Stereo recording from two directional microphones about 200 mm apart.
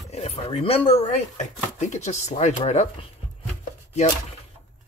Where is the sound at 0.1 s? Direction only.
30° left (ahead or behind).